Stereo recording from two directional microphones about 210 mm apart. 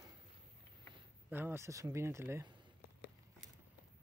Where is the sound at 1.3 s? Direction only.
10° right (ahead or behind).